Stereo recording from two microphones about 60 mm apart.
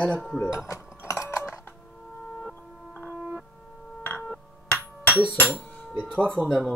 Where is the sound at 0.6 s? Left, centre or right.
Left.